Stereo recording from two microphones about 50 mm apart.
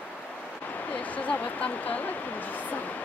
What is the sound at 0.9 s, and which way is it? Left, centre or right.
Speech, left.